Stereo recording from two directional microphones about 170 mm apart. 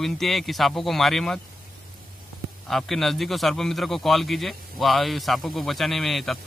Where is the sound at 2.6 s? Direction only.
Centre (ahead or behind).